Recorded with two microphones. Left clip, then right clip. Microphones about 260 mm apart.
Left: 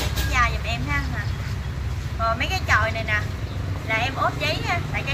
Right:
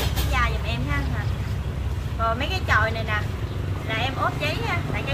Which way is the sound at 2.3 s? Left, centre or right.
Centre.